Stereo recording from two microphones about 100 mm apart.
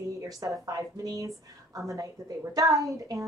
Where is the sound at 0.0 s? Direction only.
30° right (ahead or behind).